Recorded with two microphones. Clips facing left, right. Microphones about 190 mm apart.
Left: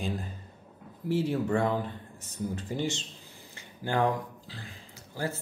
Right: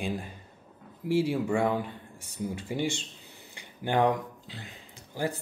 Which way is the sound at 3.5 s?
20° right (ahead or behind).